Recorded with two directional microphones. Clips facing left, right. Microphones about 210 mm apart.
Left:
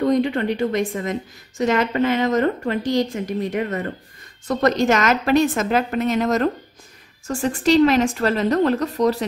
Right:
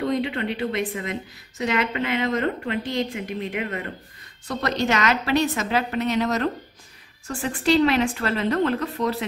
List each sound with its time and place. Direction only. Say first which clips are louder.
0.0 s a woman's voice: left 6 dB; 45° left (ahead or behind)